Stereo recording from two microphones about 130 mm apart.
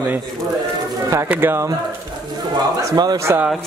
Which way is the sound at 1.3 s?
15° right (ahead or behind).